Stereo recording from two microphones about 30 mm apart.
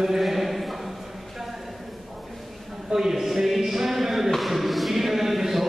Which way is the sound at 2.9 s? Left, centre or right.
Centre.